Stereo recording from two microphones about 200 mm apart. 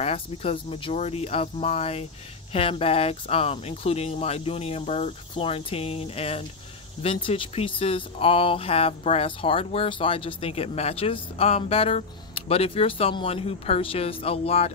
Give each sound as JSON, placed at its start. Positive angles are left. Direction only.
{"t": 0.0, "sound": "speech", "side_deg": 30}